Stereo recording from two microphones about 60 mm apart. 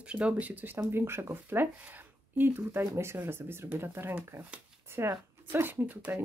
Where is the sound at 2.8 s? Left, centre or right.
Right.